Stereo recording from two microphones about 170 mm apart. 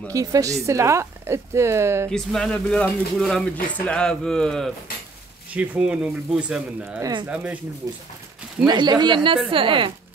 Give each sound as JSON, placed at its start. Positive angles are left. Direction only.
{"t": 0.1, "sound": "speech", "side_deg": -20}
{"t": 2.0, "sound": "speech", "side_deg": 5}
{"t": 5.5, "sound": "speech", "side_deg": -5}
{"t": 7.0, "sound": "speech", "side_deg": -25}